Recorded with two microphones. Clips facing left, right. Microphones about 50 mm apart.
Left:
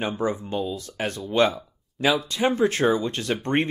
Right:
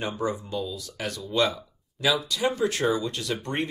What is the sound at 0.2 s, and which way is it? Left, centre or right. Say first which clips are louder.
Speech: left 3 dB; left.